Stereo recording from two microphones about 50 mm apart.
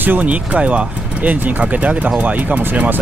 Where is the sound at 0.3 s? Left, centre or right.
Right.